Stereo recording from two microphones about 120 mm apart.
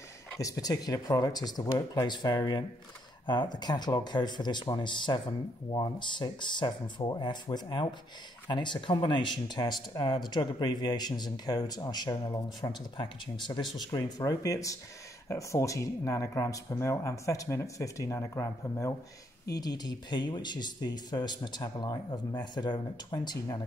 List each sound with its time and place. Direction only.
0.4 s speech: 30° left (ahead or behind)
19.5 s speech: 35° left (ahead or behind)